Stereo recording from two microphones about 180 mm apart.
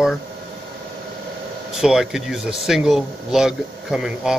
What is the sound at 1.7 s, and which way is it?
Speech, 5° right (ahead or behind).